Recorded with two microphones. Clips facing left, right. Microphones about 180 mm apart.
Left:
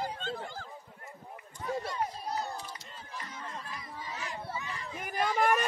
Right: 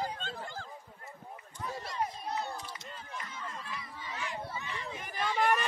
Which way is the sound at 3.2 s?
40° left (ahead or behind).